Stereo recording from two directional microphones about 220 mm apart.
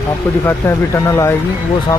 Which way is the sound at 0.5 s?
10° left (ahead or behind).